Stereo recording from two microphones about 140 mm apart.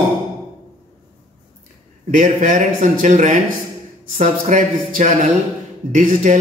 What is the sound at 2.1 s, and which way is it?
A man's voice, 70° right (ahead or behind).